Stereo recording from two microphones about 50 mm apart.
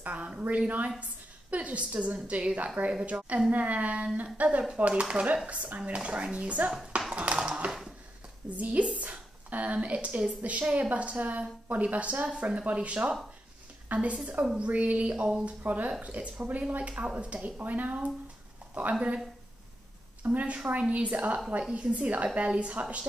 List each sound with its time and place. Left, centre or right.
0.0 s a woman's voice: right
7.2 s a sound: right
8.5 s a woman's voice: right
18.9 s speech: centre
20.2 s a woman's voice: right